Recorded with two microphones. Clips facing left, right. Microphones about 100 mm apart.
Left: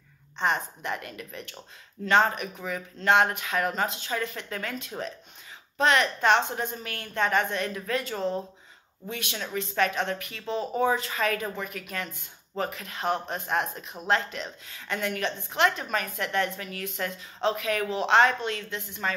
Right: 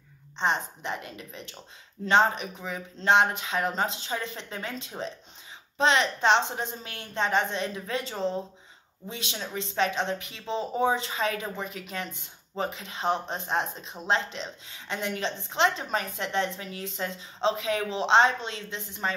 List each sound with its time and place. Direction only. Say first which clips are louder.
0.4 s a woman's voice: even; 25° right (ahead or behind)